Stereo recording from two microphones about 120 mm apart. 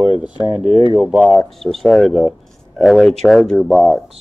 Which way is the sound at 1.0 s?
5° right (ahead or behind).